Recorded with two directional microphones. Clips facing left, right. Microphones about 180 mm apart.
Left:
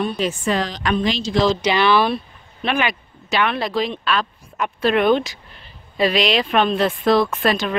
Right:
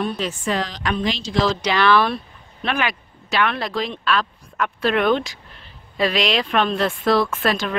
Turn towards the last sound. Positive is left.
turn(degrees=0)  # may be behind; listen again after turning